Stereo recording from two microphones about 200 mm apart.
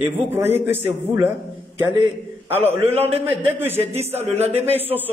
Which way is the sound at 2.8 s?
30° right (ahead or behind).